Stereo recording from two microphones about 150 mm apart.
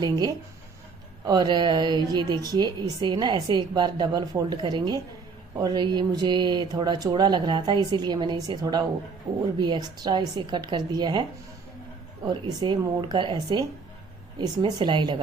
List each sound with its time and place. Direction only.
1.2 s a woman's voice: 25° right (ahead or behind)
12.4 s a woman's voice: 30° right (ahead or behind)